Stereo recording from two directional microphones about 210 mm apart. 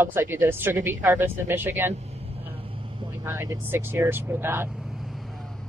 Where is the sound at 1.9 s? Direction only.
30° right (ahead or behind).